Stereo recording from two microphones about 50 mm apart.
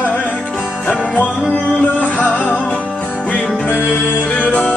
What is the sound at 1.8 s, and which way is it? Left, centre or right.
Music, left.